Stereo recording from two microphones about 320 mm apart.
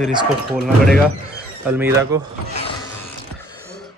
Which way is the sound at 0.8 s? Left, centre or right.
Centre.